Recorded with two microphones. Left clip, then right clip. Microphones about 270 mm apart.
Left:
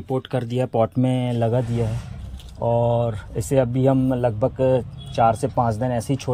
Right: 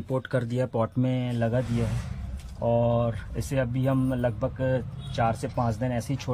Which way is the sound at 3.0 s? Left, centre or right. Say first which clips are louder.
Left 5 dB; centre.